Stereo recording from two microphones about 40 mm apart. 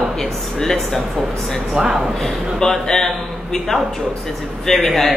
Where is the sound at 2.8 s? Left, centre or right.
Centre.